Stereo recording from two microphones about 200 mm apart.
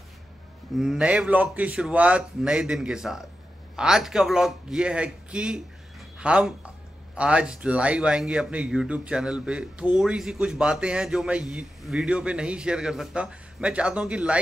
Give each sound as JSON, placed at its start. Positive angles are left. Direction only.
{"t": 0.7, "sound": "speech", "side_deg": -5}